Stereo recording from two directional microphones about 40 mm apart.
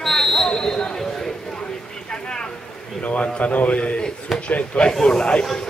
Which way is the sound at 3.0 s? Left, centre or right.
Left.